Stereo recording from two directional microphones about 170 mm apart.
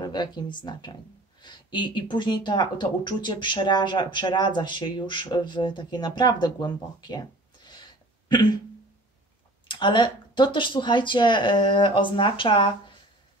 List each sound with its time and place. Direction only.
0.0 s speech: 25° left (ahead or behind)
9.7 s speech: 30° left (ahead or behind)